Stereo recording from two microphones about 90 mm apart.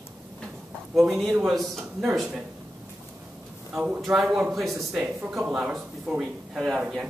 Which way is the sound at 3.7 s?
15° right (ahead or behind).